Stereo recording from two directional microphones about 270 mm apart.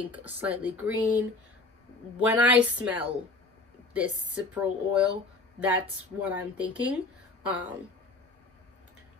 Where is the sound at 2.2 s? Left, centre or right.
Centre.